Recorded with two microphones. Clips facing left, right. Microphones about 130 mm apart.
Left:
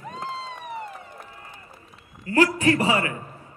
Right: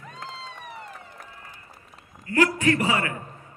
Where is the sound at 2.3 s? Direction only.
30° left (ahead or behind).